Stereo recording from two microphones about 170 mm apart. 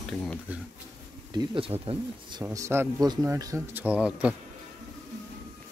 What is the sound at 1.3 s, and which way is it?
Speech, 30° right (ahead or behind).